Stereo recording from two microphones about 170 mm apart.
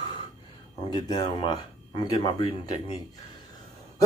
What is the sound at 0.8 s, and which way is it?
Speech, 25° left (ahead or behind).